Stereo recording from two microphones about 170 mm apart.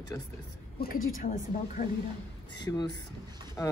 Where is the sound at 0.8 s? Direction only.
60° left (ahead or behind).